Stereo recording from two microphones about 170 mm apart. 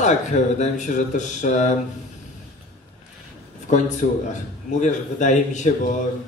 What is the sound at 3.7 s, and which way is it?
Speech, 45° left (ahead or behind).